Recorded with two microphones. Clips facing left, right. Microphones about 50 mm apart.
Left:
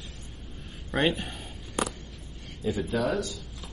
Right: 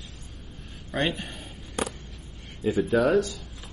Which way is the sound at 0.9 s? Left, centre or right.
Centre.